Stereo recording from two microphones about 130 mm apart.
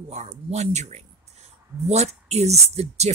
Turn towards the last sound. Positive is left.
turn(degrees=-55)  # may be behind; listen again after turning